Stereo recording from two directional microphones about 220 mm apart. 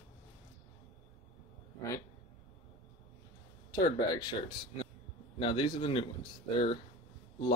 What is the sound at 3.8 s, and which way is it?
Speech, 15° left (ahead or behind).